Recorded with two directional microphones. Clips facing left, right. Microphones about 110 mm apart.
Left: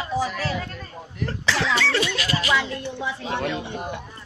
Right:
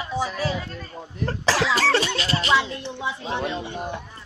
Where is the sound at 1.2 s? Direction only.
40° right (ahead or behind); by 3.6 s 20° right (ahead or behind).